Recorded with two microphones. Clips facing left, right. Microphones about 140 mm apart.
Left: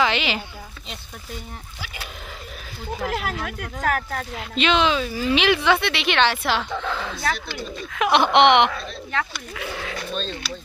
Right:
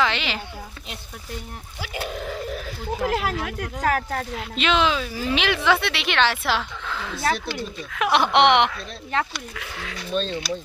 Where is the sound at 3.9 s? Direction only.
35° right (ahead or behind).